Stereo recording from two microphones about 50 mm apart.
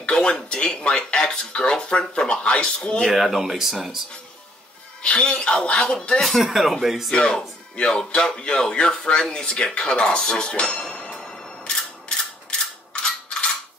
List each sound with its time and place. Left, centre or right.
0.1 s speech: centre
3.0 s speech: centre
5.0 s a man's voice: centre
6.2 s speech: centre
7.1 s music: centre